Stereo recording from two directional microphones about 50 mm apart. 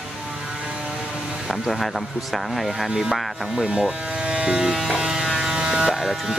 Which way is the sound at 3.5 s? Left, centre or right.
Centre.